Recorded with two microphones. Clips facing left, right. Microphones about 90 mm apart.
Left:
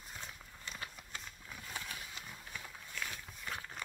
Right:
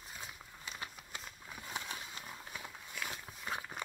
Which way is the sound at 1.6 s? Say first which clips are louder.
Right 3 dB; 20° right (ahead or behind).